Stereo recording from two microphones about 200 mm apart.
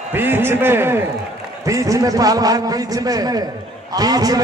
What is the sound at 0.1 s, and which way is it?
A man's voice, 10° right (ahead or behind).